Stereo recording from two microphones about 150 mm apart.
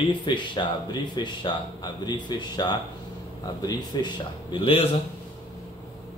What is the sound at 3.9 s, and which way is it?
Speech, 30° left (ahead or behind).